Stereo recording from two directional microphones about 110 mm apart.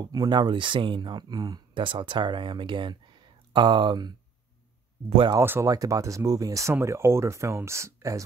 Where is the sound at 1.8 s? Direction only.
50° right (ahead or behind).